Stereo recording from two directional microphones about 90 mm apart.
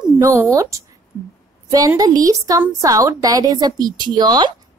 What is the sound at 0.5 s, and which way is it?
Speech, 35° right (ahead or behind).